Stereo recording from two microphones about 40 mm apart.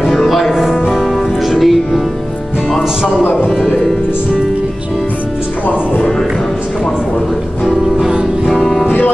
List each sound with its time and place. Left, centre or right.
0.0 s music: centre
8.8 s music: left